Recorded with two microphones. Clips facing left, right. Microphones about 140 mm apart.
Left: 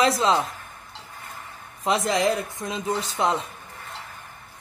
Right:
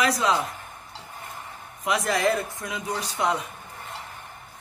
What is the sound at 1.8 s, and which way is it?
Speech, 25° left (ahead or behind).